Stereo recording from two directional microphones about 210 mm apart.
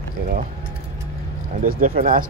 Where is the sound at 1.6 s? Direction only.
40° right (ahead or behind).